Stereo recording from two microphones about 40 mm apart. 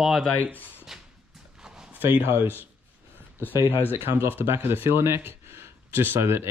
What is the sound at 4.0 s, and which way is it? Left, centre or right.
Speech, right.